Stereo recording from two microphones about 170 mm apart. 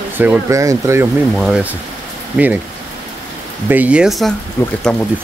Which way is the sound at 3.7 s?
10° right (ahead or behind).